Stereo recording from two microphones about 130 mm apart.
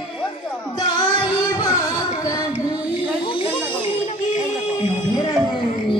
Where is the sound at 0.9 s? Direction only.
35° left (ahead or behind).